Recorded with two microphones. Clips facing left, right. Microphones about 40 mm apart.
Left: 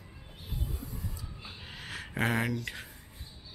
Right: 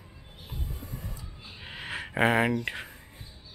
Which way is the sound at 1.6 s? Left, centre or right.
Right.